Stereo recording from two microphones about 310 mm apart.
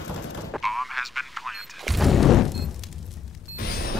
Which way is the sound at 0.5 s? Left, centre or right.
Centre.